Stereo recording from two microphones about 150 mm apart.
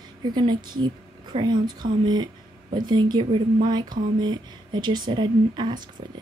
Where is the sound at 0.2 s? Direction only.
30° right (ahead or behind).